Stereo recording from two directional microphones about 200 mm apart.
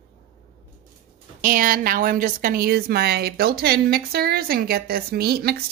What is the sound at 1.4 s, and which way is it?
Speech, 45° right (ahead or behind).